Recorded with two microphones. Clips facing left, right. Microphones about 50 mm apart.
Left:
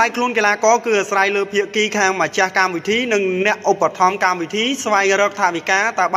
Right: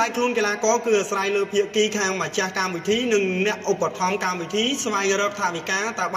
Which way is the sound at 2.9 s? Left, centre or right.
Left.